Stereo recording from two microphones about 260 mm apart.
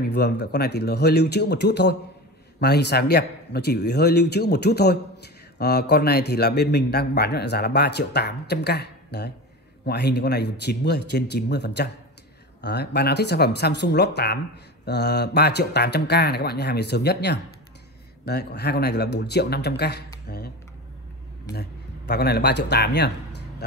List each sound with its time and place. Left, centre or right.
0.0 s a man's voice: left
21.5 s speech: left